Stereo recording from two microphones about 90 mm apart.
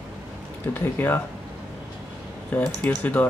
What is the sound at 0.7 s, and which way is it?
Speech, 25° left (ahead or behind).